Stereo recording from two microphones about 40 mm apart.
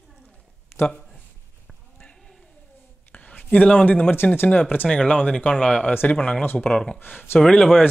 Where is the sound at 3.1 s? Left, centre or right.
Left.